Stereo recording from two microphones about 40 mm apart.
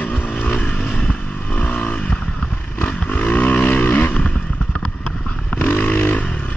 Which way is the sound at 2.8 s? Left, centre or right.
Left.